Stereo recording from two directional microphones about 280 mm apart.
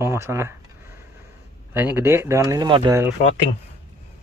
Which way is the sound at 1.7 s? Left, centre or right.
Centre.